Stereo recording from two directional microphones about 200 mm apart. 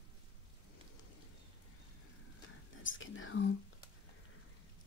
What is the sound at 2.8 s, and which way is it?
Whispering, 70° left (ahead or behind).